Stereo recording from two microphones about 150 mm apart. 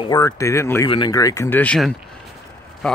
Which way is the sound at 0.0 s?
25° left (ahead or behind).